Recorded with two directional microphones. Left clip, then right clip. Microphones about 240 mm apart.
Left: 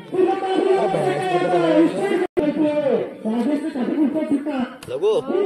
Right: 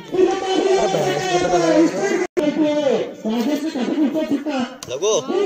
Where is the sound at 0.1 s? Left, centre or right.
Right.